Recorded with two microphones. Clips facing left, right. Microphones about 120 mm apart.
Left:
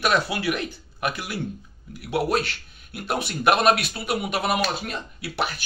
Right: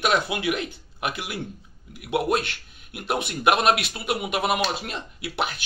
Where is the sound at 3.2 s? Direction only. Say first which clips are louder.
Left 1 dB; 20° right (ahead or behind).